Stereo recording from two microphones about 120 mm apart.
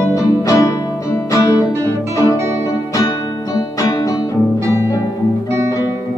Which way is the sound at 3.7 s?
30° left (ahead or behind).